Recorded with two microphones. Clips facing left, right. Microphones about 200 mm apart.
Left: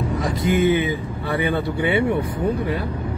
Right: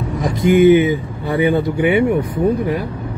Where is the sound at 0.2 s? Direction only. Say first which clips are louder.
Right 9 dB; 20° right (ahead or behind).